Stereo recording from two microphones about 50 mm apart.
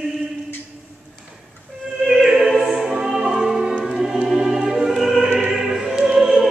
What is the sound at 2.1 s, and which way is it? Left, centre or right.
Opera, centre.